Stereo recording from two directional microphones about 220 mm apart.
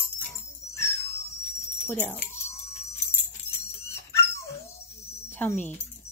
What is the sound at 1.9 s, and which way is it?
Speech, 10° left (ahead or behind).